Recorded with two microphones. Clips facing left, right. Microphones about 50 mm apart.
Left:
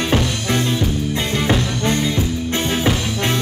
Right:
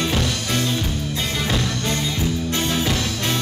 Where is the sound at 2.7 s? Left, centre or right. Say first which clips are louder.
Left 5 dB; left.